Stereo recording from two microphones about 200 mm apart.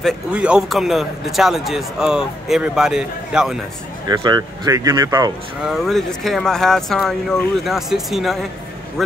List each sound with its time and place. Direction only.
0.0 s speech: 5° right (ahead or behind)
4.1 s speech: 20° right (ahead or behind)
5.6 s speech: centre (ahead or behind)